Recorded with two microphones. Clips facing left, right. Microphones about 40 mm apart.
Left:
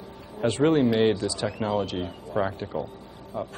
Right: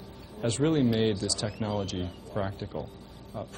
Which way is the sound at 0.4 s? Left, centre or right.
Left.